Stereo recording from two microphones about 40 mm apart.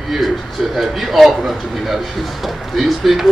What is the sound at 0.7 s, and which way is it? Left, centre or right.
A man's voice, centre.